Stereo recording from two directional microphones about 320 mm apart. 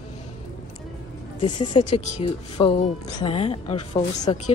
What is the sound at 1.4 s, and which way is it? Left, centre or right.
A woman's voice, centre.